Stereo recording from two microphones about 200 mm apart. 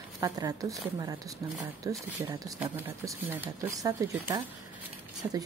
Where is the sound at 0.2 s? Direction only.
20° right (ahead or behind).